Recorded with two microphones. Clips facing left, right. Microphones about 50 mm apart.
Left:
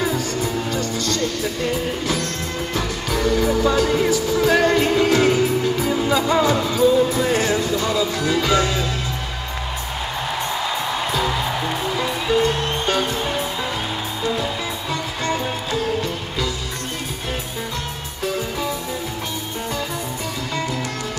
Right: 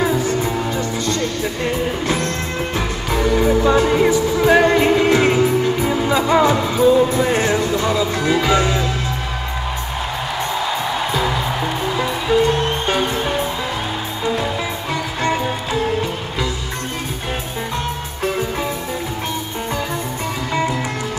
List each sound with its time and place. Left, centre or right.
0.0 s music: right
7.8 s speech: right
12.3 s music: centre
12.8 s music: centre
14.3 s music: right